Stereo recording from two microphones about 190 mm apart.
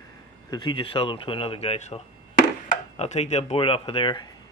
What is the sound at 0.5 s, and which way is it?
Speech, 25° left (ahead or behind).